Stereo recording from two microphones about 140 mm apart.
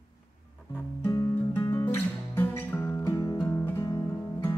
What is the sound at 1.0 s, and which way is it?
Guitar, 15° left (ahead or behind).